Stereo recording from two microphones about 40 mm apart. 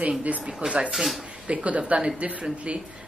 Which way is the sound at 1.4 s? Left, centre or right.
Right.